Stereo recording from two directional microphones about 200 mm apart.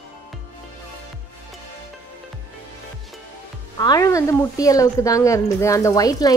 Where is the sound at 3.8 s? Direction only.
20° left (ahead or behind).